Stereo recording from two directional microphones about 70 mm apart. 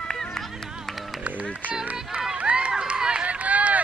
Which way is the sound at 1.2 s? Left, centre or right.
Right.